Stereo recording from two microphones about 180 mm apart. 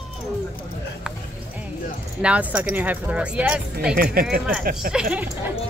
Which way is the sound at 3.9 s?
55° right (ahead or behind).